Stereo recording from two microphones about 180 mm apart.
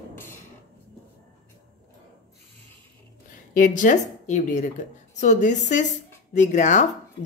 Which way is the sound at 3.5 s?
45° left (ahead or behind).